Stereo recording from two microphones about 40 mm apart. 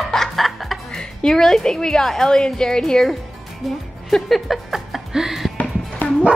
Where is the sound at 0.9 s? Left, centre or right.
Centre.